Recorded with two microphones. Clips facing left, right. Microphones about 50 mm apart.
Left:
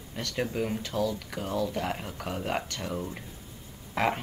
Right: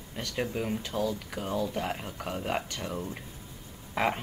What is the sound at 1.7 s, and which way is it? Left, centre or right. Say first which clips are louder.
Speech: left 1 dB; centre.